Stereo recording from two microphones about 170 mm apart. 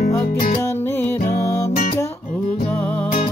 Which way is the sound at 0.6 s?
15° left (ahead or behind).